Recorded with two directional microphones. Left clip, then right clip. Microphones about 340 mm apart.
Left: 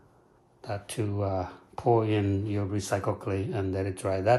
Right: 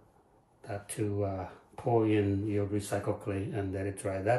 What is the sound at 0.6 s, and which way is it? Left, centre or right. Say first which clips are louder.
Speech: left 3 dB; centre.